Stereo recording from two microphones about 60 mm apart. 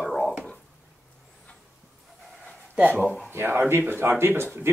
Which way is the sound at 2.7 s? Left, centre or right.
Right.